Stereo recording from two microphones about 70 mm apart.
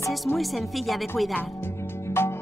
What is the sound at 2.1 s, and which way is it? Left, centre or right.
Music, left.